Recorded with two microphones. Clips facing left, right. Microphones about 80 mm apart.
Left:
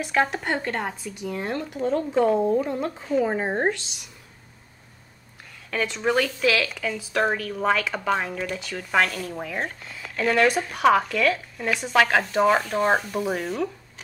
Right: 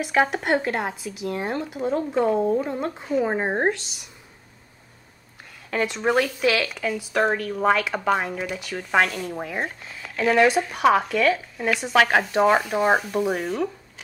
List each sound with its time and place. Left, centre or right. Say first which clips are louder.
0.0 s speech: right 2 dB; centre
1.8 s speech: left 1 dB; centre
3.3 s speech: right 1 dB; centre
3.6 s speech: right 1 dB; centre
5.7 s speech: right 2 dB; centre